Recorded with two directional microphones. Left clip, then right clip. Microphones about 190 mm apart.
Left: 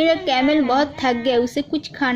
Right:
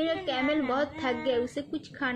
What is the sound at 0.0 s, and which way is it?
A woman's voice, 50° left (ahead or behind).